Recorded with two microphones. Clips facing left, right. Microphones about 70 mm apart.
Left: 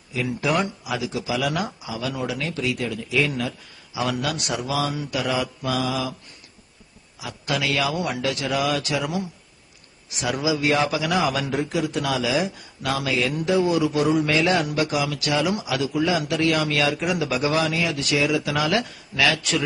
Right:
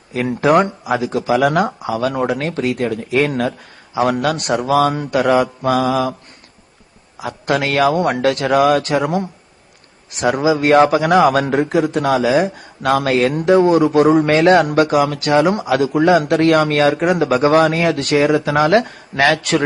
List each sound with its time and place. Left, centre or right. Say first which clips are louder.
0.1 s a man's voice: right 10 dB; right
7.2 s a man's voice: right 8 dB; right